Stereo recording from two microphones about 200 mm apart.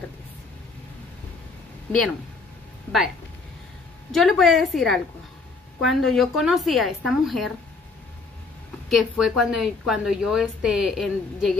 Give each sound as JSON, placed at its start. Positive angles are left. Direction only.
{"t": 1.9, "sound": "a woman's voice", "side_deg": 0}
{"t": 4.1, "sound": "a woman's voice", "side_deg": 0}
{"t": 8.8, "sound": "a woman's voice", "side_deg": 0}